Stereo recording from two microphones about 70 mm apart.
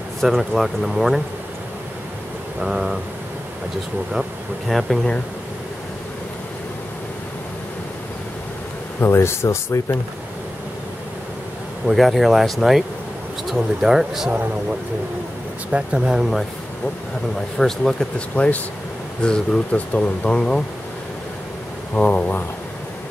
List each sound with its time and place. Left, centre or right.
0.2 s speech: centre
2.6 s speech: centre
4.1 s speech: centre
9.0 s speech: left
11.8 s speech: centre
15.7 s speech: centre
17.6 s speech: centre
18.3 s speech: left
21.9 s speech: left